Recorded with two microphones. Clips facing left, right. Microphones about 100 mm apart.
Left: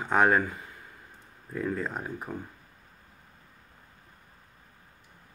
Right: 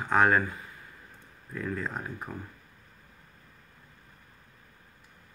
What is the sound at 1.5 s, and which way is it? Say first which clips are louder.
Speech: left 3 dB; 25° left (ahead or behind).